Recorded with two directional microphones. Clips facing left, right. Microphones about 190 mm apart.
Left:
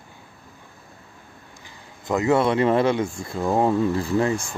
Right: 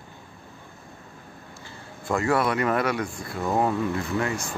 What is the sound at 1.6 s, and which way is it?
Speech, 15° left (ahead or behind).